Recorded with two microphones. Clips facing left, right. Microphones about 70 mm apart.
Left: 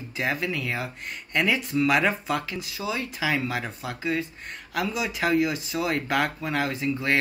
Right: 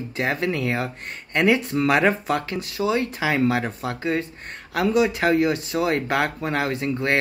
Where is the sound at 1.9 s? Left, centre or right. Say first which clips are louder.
Right 5 dB; right.